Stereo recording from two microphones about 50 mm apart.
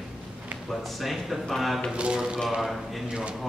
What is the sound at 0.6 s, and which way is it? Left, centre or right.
A man's voice, centre.